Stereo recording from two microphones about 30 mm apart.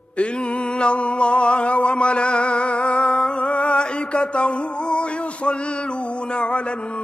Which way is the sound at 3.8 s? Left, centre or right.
Left.